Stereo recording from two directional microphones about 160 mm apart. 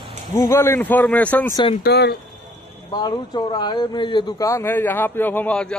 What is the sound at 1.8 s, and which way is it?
Speech, 85° left.